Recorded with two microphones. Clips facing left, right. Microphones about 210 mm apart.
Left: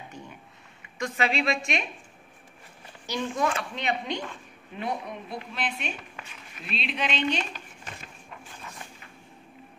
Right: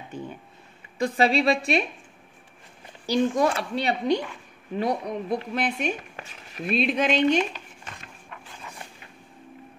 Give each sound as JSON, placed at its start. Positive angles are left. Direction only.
{"t": 0.1, "sound": "speech", "side_deg": -30}
{"t": 3.1, "sound": "speech", "side_deg": -35}